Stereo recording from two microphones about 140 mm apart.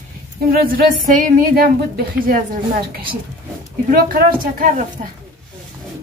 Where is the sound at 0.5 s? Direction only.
90° right; by 5.0 s 65° right (ahead or behind).